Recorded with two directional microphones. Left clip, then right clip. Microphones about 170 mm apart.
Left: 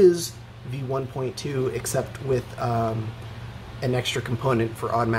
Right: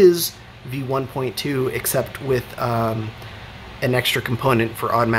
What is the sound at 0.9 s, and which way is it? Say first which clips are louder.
Speech: right 5 dB; 25° right (ahead or behind).